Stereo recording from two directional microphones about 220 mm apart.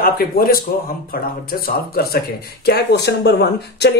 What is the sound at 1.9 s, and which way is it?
Speech, 45° left (ahead or behind).